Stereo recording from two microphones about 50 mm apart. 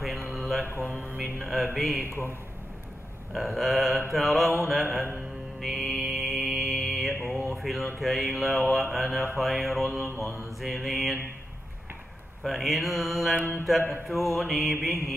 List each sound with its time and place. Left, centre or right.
0.3 s mantra: centre
0.7 s mantra: right
1.4 s mantra: centre
3.3 s mantra: centre
5.6 s music: centre
7.3 s mantra: centre
12.4 s mantra: centre